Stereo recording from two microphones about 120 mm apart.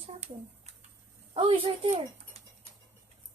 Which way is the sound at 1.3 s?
50° right (ahead or behind).